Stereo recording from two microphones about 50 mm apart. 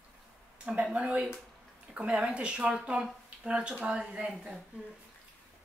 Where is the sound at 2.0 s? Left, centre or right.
Centre.